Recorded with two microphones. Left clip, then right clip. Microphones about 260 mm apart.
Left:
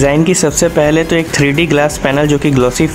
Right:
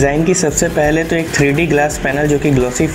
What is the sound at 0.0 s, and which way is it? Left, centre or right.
Speech, centre.